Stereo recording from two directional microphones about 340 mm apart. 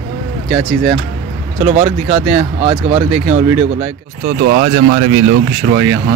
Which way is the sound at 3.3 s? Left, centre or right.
Right.